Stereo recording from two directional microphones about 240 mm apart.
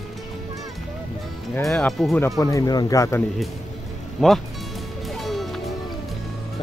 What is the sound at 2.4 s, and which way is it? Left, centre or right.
Speech, centre.